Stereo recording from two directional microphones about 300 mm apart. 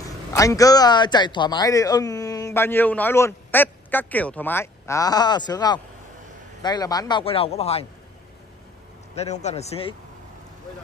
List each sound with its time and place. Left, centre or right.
0.0 s a man's voice: centre
9.1 s a man's voice: left